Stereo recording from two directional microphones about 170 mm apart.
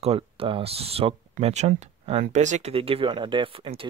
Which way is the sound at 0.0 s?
35° right (ahead or behind).